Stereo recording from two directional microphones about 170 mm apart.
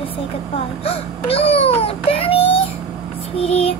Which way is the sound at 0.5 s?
35° left (ahead or behind).